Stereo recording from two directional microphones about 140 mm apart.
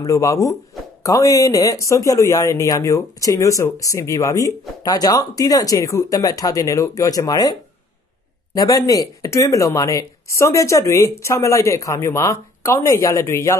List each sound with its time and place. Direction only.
0.0 s speech: 20° left (ahead or behind)
8.5 s speech: 25° left (ahead or behind)